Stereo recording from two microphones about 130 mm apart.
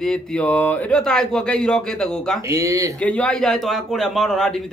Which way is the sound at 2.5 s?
25° right (ahead or behind).